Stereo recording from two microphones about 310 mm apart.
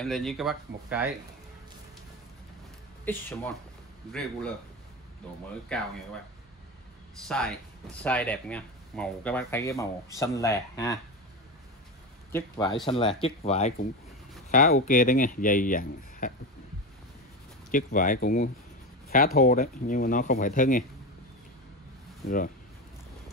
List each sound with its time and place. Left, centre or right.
0.0 s speech: centre
3.1 s speech: centre
5.7 s speech: centre
7.2 s speech: centre
12.3 s speech: centre; by 16.3 s left
17.6 s speech: left